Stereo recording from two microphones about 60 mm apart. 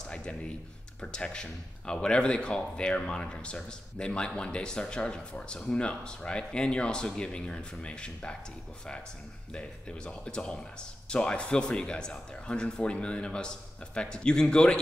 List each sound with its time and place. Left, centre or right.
0.0 s a sound: centre
1.0 s speech: centre
9.5 s speech: centre